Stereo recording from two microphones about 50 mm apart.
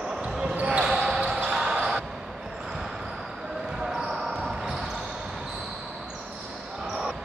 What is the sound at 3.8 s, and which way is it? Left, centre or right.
Basketball bounce, centre.